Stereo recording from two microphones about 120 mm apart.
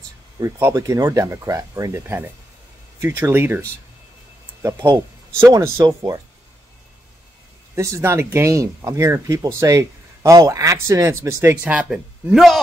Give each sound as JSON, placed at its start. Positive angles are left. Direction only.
{"t": 0.4, "sound": "speech", "side_deg": -25}
{"t": 7.7, "sound": "speech", "side_deg": -25}
{"t": 11.6, "sound": "speech", "side_deg": -10}